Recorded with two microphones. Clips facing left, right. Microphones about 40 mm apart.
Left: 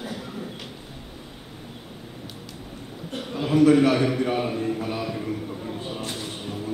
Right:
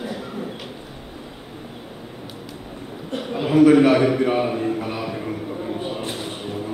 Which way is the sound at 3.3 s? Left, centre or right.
Right.